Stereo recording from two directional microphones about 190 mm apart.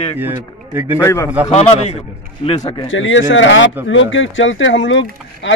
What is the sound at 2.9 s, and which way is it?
Speech, 80° left.